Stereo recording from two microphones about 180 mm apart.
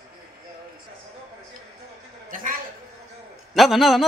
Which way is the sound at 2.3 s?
50° right (ahead or behind).